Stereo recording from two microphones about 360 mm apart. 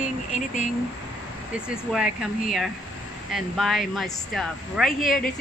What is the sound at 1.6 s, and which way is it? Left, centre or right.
Speech, centre.